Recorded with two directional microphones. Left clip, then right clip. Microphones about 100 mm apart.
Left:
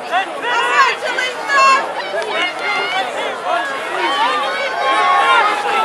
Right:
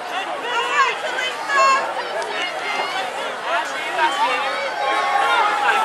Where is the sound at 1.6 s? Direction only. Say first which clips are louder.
Left 4 dB; 20° left (ahead or behind).